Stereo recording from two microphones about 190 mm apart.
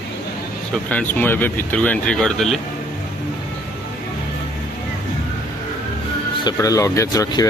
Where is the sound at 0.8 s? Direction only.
10° left (ahead or behind).